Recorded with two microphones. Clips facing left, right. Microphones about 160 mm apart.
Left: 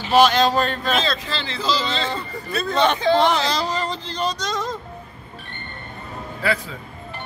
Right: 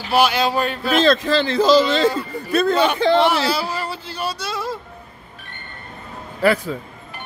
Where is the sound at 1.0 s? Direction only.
50° right (ahead or behind).